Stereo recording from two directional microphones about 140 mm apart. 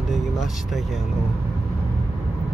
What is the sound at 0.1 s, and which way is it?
Vehicle, centre (ahead or behind).